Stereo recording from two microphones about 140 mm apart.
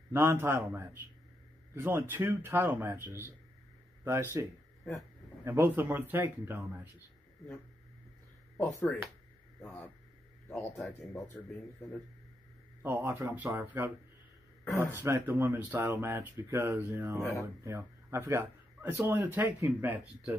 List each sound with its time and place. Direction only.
0.1 s speech: 15° right (ahead or behind)
8.5 s speech: 10° left (ahead or behind)
12.8 s speech: 15° right (ahead or behind)
14.6 s a sound: 15° left (ahead or behind)
14.9 s speech: 15° right (ahead or behind)
17.2 s speech: 20° left (ahead or behind)
17.6 s speech: 20° right (ahead or behind)